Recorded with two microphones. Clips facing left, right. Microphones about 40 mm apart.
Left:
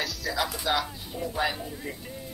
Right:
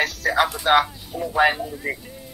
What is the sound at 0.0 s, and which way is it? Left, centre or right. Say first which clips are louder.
Music: right 9 dB; right.